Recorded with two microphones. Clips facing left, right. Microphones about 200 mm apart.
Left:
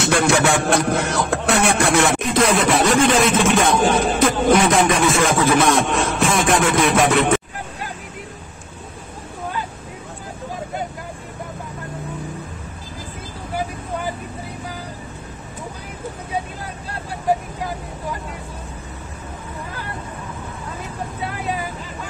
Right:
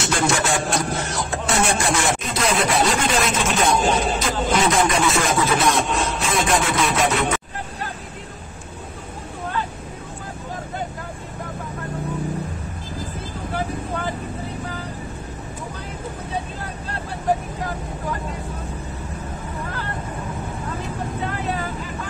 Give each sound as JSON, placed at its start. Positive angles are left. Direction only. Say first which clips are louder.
{"t": 0.0, "sound": "a sound", "louder": "left 5 dB", "side_deg": 60}
{"t": 2.9, "sound": "music", "louder": "left 6 dB", "side_deg": 55}
{"t": 21.2, "sound": "vehicle", "louder": "left 1 dB", "side_deg": 10}